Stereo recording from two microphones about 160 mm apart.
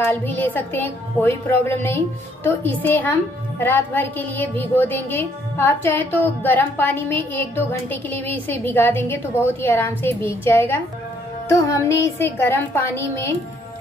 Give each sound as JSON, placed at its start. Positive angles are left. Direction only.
{"t": 0.0, "sound": "speech", "side_deg": 10}